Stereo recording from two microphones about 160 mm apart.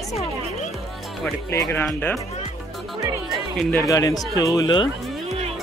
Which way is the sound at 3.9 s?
20° left (ahead or behind).